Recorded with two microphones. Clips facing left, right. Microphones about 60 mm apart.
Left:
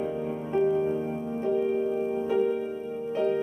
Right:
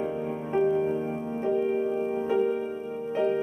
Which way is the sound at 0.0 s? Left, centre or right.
Right.